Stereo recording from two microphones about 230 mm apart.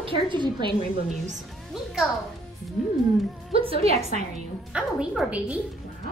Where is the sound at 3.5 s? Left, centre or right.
Right.